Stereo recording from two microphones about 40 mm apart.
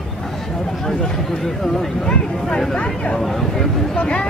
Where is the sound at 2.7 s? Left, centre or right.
Left.